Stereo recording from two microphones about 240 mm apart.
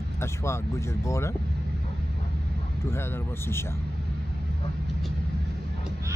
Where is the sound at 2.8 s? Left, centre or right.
Centre.